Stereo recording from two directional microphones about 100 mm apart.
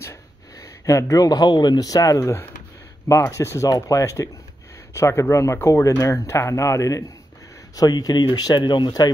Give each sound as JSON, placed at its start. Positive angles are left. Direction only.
{"t": 0.0, "sound": "speech", "side_deg": 30}